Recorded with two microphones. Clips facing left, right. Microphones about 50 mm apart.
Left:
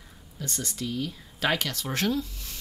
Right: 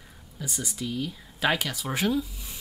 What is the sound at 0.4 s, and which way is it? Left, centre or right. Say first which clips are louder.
Speech: even; centre.